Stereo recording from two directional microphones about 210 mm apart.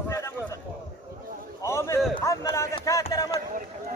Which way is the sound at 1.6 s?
15° left (ahead or behind).